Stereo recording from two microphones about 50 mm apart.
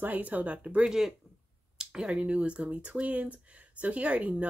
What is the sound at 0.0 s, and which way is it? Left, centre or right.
Speech, right.